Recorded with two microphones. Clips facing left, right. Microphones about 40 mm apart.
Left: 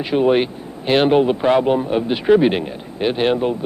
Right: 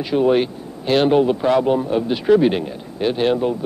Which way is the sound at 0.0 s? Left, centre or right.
Left.